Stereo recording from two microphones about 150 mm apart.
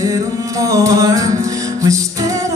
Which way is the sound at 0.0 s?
25° right (ahead or behind).